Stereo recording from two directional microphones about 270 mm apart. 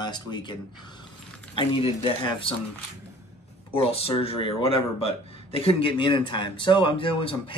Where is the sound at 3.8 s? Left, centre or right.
Left.